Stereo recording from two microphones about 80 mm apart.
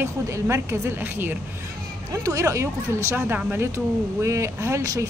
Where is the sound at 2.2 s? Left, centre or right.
Right.